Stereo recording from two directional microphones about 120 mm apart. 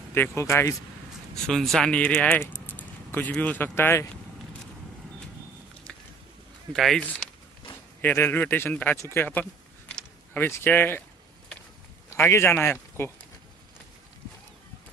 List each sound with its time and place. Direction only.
0.1 s speech: 20° left (ahead or behind)
1.3 s speech: centre (ahead or behind); by 4.1 s 20° left (ahead or behind)
5.9 s a sound: 10° left (ahead or behind)
6.7 s speech: 5° left (ahead or behind)
8.0 s speech: 15° left (ahead or behind)
9.1 s a sound: 15° left (ahead or behind)
12.1 s a man's voice: 20° left (ahead or behind)